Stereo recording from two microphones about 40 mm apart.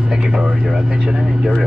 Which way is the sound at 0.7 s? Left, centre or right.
Centre.